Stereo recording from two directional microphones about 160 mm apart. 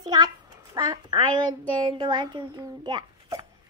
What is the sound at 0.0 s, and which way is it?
A child's voice, 25° right (ahead or behind).